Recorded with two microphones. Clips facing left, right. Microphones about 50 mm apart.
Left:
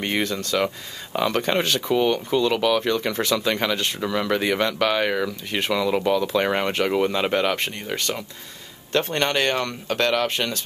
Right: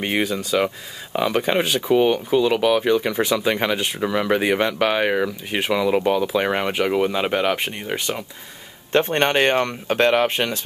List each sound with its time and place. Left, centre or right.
0.0 s speech: centre
8.9 s speech: right